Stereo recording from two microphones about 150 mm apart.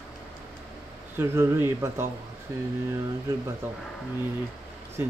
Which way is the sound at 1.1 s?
15° right (ahead or behind).